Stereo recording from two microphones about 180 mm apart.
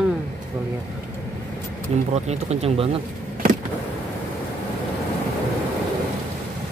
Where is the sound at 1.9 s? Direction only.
35° right (ahead or behind).